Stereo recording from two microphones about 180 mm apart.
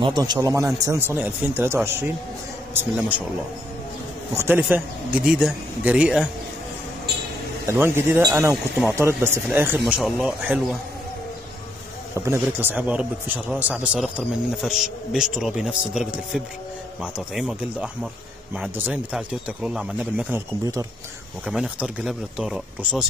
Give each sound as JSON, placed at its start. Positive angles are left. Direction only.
{"t": 0.0, "sound": "speech", "side_deg": -25}
{"t": 4.4, "sound": "a man's voice", "side_deg": -10}
{"t": 7.6, "sound": "a man's voice", "side_deg": -15}
{"t": 12.2, "sound": "a man's voice", "side_deg": -15}
{"t": 21.5, "sound": "a man's voice", "side_deg": -5}